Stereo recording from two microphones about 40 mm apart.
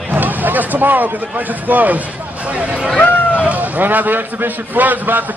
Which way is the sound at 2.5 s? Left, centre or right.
Right.